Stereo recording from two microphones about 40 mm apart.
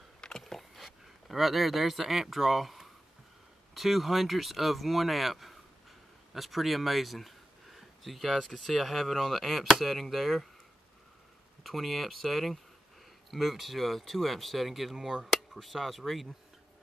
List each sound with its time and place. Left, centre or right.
0.4 s speech: centre
11.6 s speech: centre
15.0 s speech: centre
15.5 s speech: centre